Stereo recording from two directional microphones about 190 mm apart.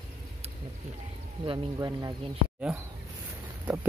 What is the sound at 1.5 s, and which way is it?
Speech, 20° right (ahead or behind).